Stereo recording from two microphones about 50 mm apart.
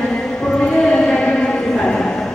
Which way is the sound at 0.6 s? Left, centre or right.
Centre.